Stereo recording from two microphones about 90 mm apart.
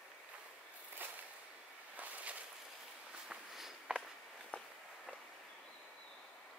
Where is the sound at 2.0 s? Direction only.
15° right (ahead or behind).